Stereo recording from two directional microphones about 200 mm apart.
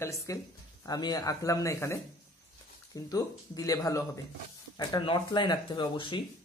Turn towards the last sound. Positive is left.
turn(degrees=25)  # may be behind; listen again after turning